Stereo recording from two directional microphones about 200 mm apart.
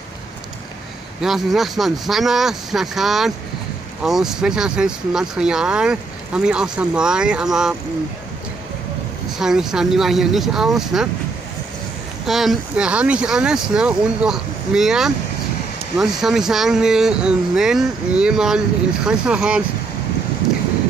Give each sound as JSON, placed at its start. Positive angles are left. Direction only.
{"t": 1.2, "sound": "speech", "side_deg": 0}
{"t": 9.4, "sound": "speech", "side_deg": 0}
{"t": 12.3, "sound": "speech", "side_deg": 0}